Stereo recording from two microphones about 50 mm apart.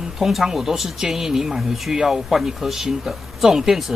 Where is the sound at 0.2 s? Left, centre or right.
Centre.